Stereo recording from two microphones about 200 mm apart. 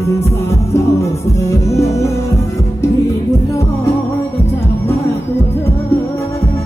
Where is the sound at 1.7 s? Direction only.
15° left (ahead or behind).